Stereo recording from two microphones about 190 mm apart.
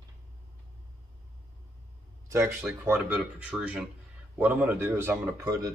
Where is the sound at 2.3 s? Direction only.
15° right (ahead or behind).